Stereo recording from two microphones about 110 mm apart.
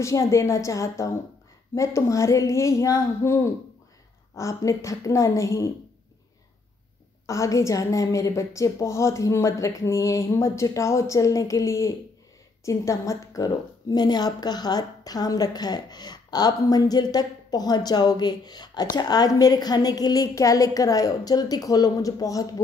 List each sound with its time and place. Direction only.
0.0 s a woman's voice: 30° left (ahead or behind)
7.2 s a woman's voice: 30° left (ahead or behind)